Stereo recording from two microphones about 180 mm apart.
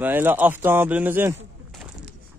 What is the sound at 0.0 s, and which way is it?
Speech, 10° right (ahead or behind).